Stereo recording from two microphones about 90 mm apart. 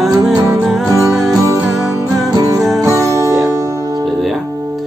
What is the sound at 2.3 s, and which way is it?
Music, 40° right (ahead or behind).